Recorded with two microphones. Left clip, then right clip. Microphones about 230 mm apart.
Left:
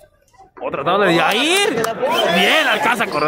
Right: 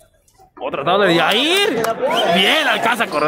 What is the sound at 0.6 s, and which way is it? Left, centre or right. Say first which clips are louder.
Speech: right 1 dB; centre.